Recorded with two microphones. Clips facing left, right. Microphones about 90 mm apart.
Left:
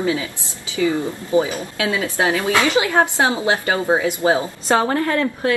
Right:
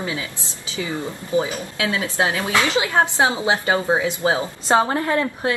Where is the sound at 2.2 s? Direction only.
20° right (ahead or behind).